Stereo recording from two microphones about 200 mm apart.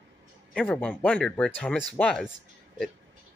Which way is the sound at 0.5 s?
5° left (ahead or behind).